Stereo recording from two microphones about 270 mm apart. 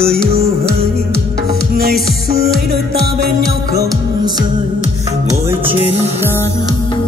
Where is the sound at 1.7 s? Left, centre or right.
Right.